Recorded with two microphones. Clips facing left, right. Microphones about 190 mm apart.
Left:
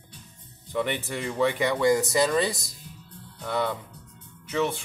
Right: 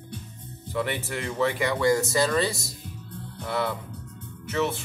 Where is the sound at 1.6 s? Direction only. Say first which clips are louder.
Even; 20° left (ahead or behind).